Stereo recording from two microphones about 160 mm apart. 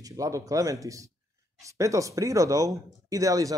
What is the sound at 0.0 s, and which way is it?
Speech, 20° right (ahead or behind).